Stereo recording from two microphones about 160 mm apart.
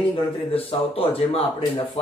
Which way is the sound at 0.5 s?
35° left (ahead or behind).